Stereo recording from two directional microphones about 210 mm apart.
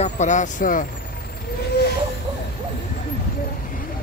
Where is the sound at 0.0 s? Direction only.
35° left (ahead or behind).